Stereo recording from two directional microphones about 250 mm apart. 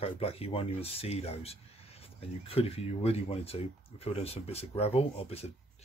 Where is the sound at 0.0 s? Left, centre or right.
Left.